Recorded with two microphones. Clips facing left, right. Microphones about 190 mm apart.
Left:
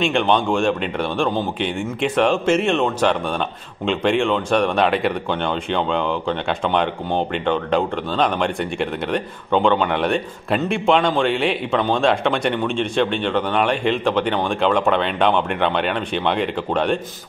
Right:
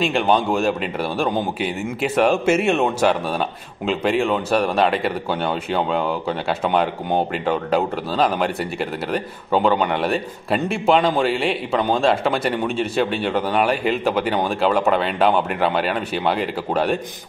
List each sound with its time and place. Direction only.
0.0 s speech: 5° right (ahead or behind)